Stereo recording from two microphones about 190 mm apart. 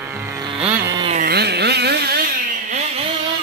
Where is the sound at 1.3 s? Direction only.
60° right (ahead or behind).